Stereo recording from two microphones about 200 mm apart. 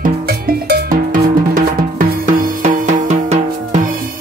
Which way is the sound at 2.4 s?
45° right (ahead or behind).